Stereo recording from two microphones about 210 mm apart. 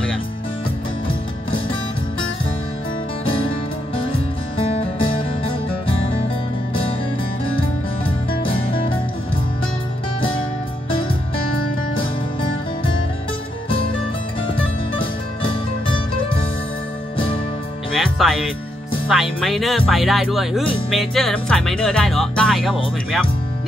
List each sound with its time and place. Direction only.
8.4 s music: 25° left (ahead or behind)
17.9 s music: centre (ahead or behind)
19.0 s speech: centre (ahead or behind)